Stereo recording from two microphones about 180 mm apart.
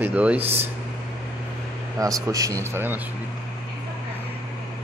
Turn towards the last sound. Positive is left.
turn(degrees=-10)  # may be behind; listen again after turning